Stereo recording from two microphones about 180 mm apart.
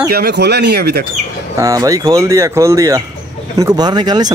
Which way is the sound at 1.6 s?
20° right (ahead or behind).